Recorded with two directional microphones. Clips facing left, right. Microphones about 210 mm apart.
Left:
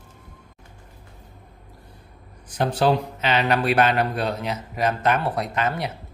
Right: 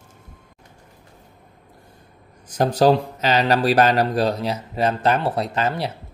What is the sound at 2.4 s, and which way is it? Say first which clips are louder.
Speech: right 4 dB; 40° right (ahead or behind).